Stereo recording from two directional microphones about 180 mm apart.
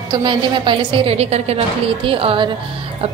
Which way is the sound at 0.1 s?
25° right (ahead or behind).